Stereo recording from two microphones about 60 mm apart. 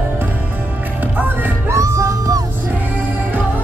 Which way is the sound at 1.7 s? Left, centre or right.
Right.